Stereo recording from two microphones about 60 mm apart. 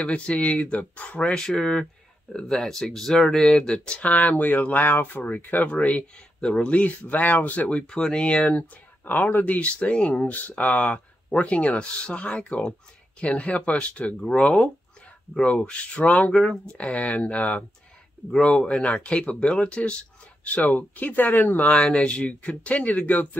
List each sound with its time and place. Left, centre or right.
0.0 s speech: left
1.3 s speech: centre; by 23.2 s left